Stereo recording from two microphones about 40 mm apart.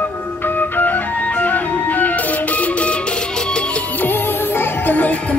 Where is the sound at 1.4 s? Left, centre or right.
Left.